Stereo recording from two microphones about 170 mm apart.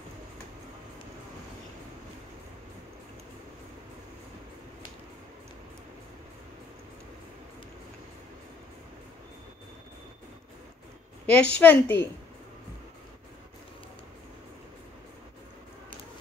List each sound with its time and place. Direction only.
11.2 s a woman's voice: 5° left (ahead or behind)